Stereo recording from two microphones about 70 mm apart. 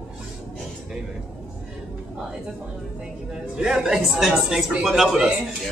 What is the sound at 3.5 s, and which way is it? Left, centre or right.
Speech, centre.